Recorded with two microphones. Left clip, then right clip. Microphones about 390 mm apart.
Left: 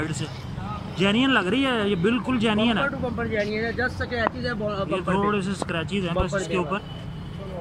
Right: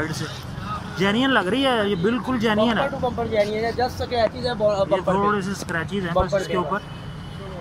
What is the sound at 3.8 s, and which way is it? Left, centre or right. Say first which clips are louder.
Speech: right 4 dB; centre.